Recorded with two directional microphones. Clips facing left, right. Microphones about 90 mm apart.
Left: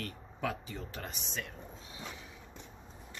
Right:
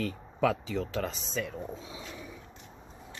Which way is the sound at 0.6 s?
90° right.